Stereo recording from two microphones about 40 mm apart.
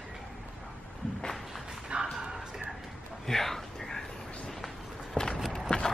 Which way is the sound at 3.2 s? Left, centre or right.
Centre.